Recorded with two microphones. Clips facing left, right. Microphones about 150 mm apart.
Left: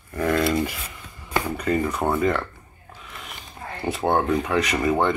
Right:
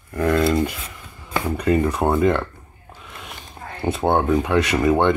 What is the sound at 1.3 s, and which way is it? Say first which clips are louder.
Speech: right 3 dB; centre (ahead or behind).